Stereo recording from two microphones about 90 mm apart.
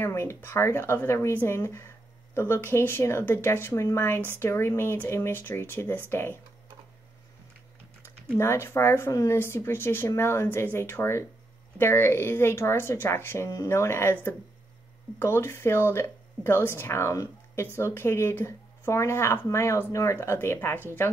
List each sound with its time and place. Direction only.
0.0 s speech: 30° left (ahead or behind)
8.4 s speech: 30° left (ahead or behind)